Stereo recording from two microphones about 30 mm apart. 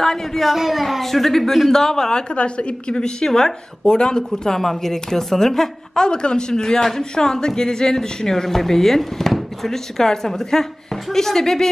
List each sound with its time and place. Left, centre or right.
0.0 s a woman's voice: centre
0.5 s a woman's voice: centre
2.3 s a woman's voice: left
3.0 s speech: left
4.6 s a woman's voice: centre
6.0 s a woman's voice: left; by 11.7 s centre